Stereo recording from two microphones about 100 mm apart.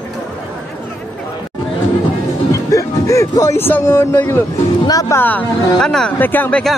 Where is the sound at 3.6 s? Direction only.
20° left (ahead or behind).